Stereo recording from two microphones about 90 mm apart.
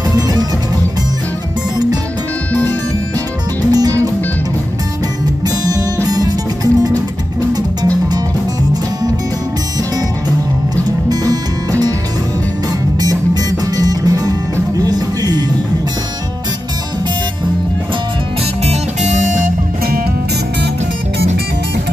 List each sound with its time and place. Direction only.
3.7 s music: 40° right (ahead or behind)
5.6 s music: 40° right (ahead or behind)
11.1 s music: 45° right (ahead or behind)
13.0 s music: 45° right (ahead or behind)